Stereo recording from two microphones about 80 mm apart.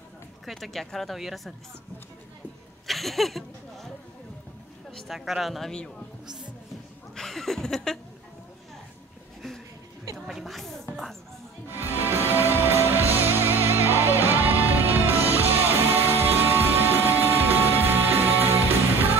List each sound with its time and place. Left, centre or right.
0.5 s speech: centre
2.9 s a sound: centre
4.9 s speech: centre
7.2 s speech: centre
10.1 s music: centre
11.9 s music: right